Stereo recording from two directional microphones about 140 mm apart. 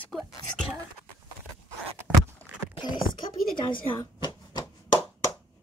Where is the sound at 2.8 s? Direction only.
35° left (ahead or behind).